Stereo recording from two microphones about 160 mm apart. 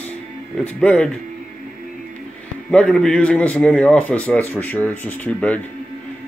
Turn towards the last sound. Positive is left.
turn(degrees=10)  # may be behind; listen again after turning